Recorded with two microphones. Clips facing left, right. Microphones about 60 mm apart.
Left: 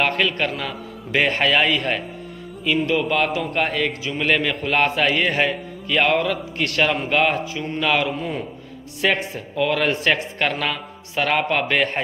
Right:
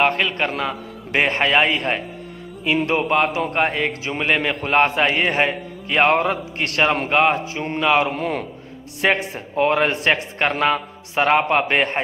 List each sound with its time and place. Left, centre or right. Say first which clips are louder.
0.0 s a man's voice: right 2 dB; centre
3.1 s a man's voice: right 2 dB; right
4.2 s a man's voice: even; right
8.1 s a man's voice: right 2 dB; right
9.0 s a man's voice: right 2 dB; right